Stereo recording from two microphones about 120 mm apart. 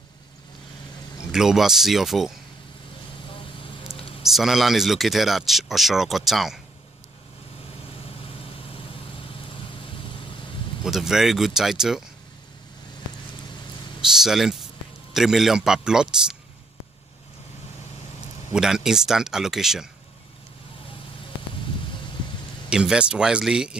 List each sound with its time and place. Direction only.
1.3 s speech: 5° right (ahead or behind)
3.3 s vehicle: 45° left (ahead or behind)
4.2 s speech: centre (ahead or behind)
8.6 s vehicle: 50° left (ahead or behind)
10.8 s speech: 5° right (ahead or behind)
14.0 s speech: 5° right (ahead or behind)
18.5 s speech: 5° right (ahead or behind)
22.7 s speech: 5° right (ahead or behind)